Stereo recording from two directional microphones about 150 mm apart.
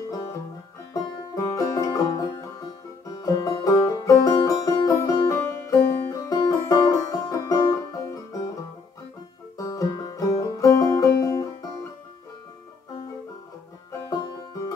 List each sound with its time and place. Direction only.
1.3 s music: 25° left (ahead or behind)
9.6 s music: 25° left (ahead or behind)
14.1 s music: 25° left (ahead or behind)